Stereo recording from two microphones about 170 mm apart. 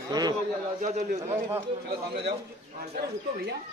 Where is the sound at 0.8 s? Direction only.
45° right (ahead or behind).